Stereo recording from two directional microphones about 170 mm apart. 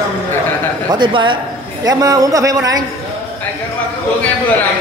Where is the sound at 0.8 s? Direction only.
25° right (ahead or behind).